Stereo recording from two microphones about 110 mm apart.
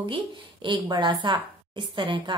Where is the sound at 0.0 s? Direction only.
50° right (ahead or behind).